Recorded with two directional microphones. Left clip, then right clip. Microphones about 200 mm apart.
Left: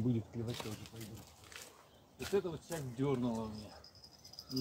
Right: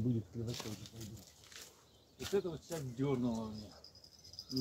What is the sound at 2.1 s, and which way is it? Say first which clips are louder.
Speech: left 1 dB; 5° right (ahead or behind).